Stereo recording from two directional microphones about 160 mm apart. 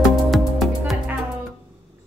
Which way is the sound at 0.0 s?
Centre (ahead or behind).